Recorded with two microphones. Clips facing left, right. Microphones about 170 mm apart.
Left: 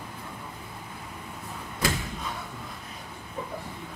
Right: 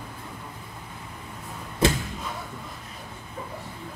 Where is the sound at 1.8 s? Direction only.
25° right (ahead or behind).